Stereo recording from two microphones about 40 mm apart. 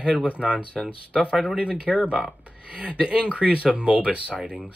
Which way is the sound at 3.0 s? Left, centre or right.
Right.